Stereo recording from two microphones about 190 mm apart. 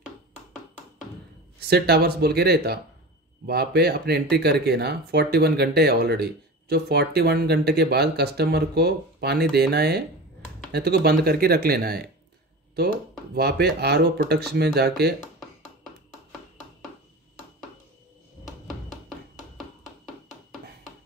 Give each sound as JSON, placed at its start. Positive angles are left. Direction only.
{"t": 1.7, "sound": "speech", "side_deg": -55}
{"t": 13.3, "sound": "speech", "side_deg": -60}
{"t": 19.0, "sound": "music", "side_deg": 0}